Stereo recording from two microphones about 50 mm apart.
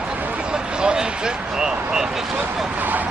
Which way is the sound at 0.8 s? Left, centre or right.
Centre.